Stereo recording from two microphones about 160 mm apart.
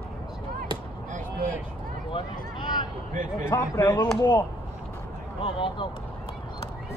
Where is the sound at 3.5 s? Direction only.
15° left (ahead or behind).